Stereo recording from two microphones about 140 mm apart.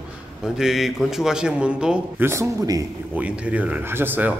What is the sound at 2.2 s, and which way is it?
Speech, 20° right (ahead or behind).